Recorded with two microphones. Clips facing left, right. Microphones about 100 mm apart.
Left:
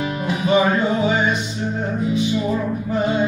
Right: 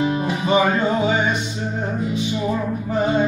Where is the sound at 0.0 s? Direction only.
30° right (ahead or behind).